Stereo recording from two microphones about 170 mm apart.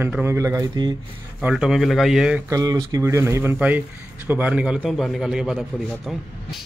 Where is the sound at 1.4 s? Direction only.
5° right (ahead or behind).